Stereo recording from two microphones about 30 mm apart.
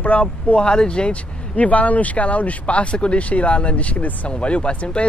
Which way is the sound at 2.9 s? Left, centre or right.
Left.